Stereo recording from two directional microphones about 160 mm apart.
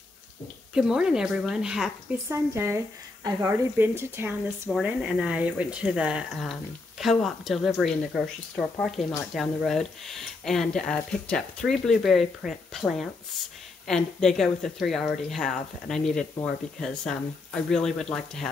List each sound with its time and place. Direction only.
0.7 s speech: 5° right (ahead or behind)
2.2 s speech: 15° right (ahead or behind)
4.6 s speech: centre (ahead or behind)